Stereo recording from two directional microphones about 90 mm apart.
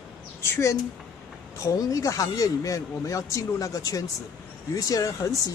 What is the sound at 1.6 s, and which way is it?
Speech, 40° left (ahead or behind).